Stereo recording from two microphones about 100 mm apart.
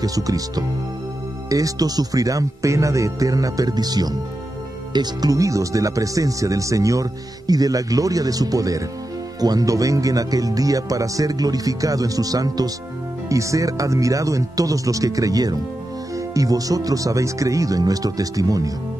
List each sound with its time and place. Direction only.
0.0 s speech: 35° right (ahead or behind)